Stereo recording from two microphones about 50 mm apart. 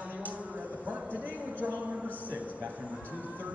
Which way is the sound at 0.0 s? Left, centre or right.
Right.